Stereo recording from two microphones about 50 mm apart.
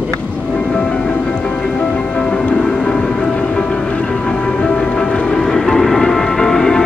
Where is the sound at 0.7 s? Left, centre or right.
Left.